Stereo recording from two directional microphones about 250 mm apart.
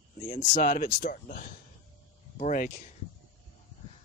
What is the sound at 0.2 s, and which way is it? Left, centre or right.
Speech, left.